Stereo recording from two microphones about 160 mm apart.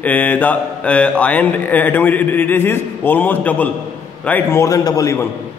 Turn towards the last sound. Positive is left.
turn(degrees=20)  # may be behind; listen again after turning